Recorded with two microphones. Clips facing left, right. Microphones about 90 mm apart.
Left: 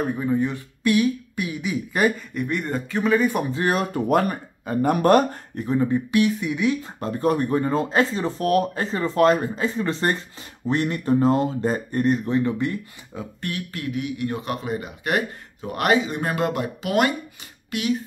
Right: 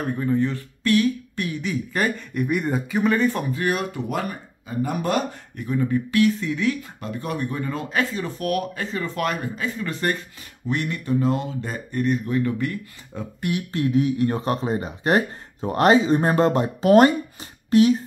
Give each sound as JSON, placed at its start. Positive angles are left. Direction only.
{"t": 0.1, "sound": "speech", "side_deg": 10}
{"t": 2.3, "sound": "speech", "side_deg": -10}
{"t": 3.5, "sound": "speech", "side_deg": 35}
{"t": 4.1, "sound": "speech", "side_deg": 50}
{"t": 5.6, "sound": "speech", "side_deg": 30}
{"t": 6.8, "sound": "speech", "side_deg": 35}
{"t": 13.1, "sound": "speech", "side_deg": 5}
{"t": 13.7, "sound": "speech", "side_deg": -30}